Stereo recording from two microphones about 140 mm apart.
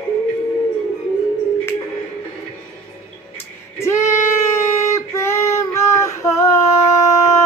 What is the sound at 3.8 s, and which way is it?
Child singing, 20° left (ahead or behind).